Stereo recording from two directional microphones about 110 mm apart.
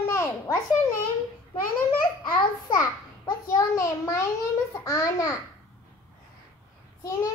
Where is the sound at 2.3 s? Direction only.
40° left (ahead or behind).